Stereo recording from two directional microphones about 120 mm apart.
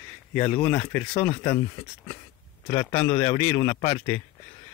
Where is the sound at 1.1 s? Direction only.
50° left (ahead or behind).